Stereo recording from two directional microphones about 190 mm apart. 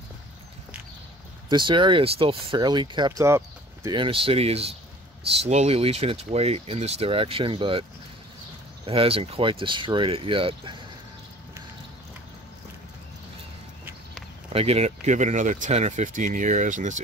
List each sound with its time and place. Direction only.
1.5 s speech: 25° right (ahead or behind)
8.8 s speech: 30° right (ahead or behind)
14.5 s speech: 30° right (ahead or behind)